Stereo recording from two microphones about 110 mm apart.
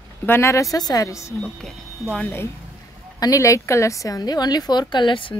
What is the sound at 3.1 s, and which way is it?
A woman's voice, 30° left (ahead or behind).